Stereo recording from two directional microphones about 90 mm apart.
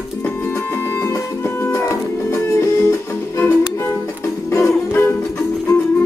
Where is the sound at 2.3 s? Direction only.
30° left (ahead or behind).